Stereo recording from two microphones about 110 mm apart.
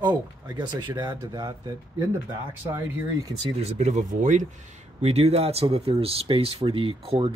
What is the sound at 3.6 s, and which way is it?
Speech, 90° right.